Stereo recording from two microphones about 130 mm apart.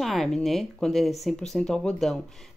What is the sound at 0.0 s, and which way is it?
Speech, centre (ahead or behind).